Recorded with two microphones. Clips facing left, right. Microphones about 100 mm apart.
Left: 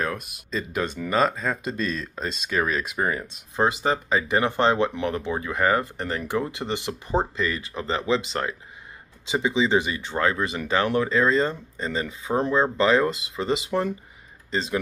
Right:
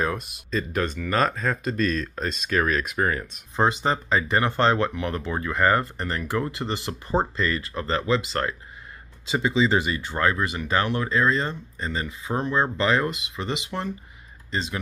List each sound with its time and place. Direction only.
0.0 s speech: centre (ahead or behind)
0.5 s speech: 15° left (ahead or behind)
1.6 s speech: 20° left (ahead or behind)